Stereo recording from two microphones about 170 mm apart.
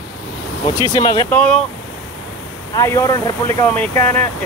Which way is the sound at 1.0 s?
20° left (ahead or behind).